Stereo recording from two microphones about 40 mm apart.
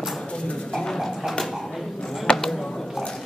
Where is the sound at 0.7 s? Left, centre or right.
Centre.